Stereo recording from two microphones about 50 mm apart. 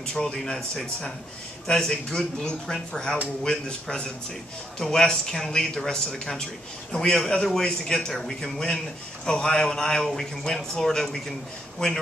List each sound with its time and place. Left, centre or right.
0.0 s a man's voice: centre